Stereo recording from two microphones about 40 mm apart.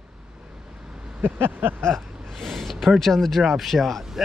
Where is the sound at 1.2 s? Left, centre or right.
Right.